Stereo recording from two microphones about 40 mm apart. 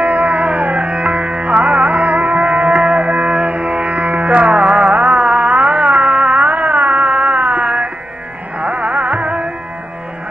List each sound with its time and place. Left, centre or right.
0.0 s music: right